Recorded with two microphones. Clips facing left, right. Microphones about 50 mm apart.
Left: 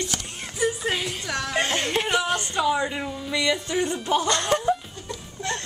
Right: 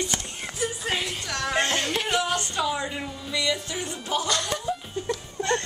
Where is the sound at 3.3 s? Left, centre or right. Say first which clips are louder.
Left 4 dB; left.